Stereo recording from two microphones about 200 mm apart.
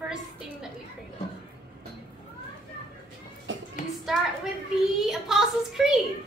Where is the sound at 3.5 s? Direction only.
65° right (ahead or behind).